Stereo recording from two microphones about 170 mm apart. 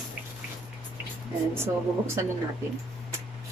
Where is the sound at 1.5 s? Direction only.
15° right (ahead or behind).